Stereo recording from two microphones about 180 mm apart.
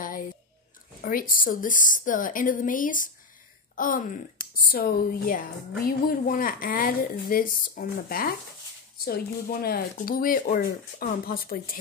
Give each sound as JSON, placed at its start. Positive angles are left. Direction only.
{"t": 1.0, "sound": "speech", "side_deg": 50}